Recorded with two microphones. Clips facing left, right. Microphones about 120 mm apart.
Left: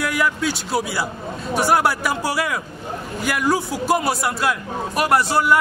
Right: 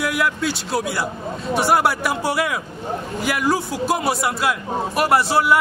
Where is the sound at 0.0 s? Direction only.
Centre (ahead or behind).